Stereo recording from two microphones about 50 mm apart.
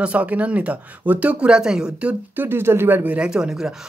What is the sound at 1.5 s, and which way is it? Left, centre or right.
Speech, centre.